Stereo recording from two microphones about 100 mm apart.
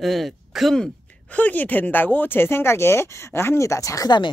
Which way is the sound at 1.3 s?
15° left (ahead or behind).